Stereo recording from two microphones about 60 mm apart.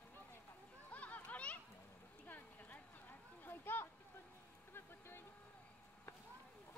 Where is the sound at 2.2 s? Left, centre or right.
Left.